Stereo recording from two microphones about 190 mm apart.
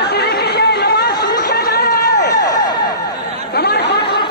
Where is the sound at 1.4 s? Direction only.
50° left (ahead or behind).